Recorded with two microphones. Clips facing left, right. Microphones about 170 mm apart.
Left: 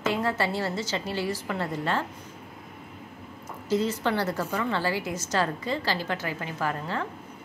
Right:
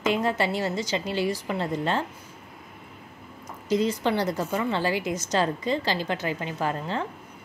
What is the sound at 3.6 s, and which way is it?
A woman's voice, 15° right (ahead or behind).